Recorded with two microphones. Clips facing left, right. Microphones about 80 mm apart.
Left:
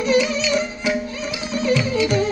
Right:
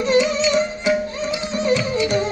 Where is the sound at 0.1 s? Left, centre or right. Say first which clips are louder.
Right 2 dB; right.